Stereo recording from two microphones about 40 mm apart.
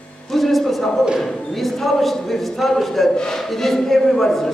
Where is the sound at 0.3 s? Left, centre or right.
Centre.